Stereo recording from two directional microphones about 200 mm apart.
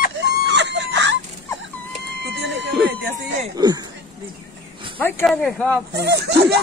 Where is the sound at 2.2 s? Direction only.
60° right (ahead or behind).